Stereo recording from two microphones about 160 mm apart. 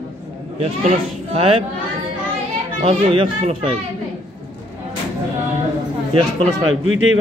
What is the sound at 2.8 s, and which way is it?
Speech, 35° right (ahead or behind).